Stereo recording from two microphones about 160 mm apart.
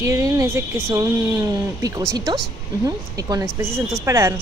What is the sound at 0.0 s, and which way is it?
Speech, 20° right (ahead or behind).